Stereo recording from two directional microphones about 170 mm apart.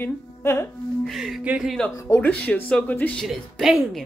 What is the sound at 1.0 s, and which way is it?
Speech, centre (ahead or behind).